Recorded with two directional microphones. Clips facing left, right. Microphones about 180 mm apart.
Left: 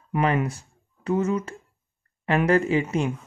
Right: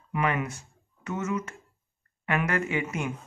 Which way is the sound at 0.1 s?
35° left (ahead or behind).